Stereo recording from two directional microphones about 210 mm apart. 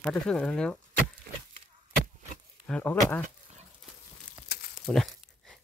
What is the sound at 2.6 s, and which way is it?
Speech, 5° left (ahead or behind).